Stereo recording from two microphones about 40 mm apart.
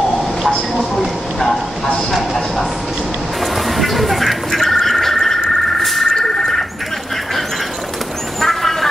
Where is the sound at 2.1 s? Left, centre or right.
Centre.